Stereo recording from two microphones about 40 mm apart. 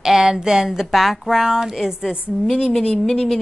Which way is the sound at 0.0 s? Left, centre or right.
Centre.